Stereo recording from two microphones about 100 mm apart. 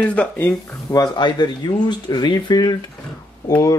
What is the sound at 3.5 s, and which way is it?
Speech, 35° left (ahead or behind).